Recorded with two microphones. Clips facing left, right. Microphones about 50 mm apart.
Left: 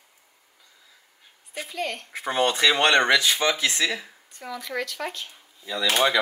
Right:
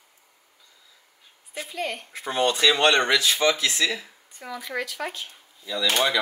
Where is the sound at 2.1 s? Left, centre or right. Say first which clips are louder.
Left 1 dB; left.